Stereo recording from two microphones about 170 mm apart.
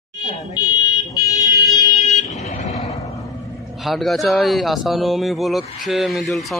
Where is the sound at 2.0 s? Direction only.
45° left (ahead or behind).